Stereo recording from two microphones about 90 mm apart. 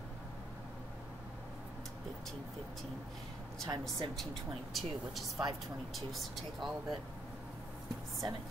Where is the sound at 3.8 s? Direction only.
Centre (ahead or behind).